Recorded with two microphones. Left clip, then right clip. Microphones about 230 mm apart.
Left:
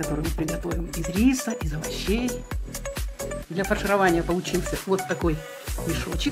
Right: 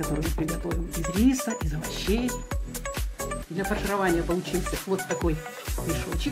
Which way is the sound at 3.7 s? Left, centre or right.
Centre.